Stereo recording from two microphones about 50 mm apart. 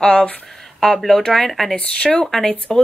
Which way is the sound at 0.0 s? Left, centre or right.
Centre.